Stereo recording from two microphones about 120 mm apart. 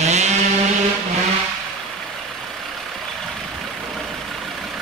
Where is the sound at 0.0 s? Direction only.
70° right (ahead or behind).